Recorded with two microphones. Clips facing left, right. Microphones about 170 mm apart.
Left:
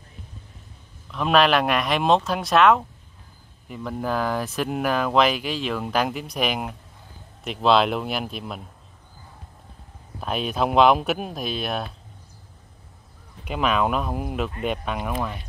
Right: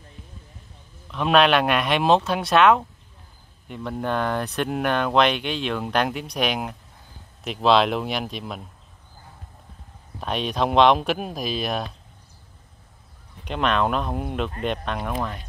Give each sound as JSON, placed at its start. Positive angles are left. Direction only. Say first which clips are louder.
{"t": 1.1, "sound": "speech", "louder": "right 1 dB", "side_deg": 0}
{"t": 10.2, "sound": "speech", "louder": "even", "side_deg": 5}
{"t": 13.5, "sound": "speech", "louder": "even", "side_deg": 5}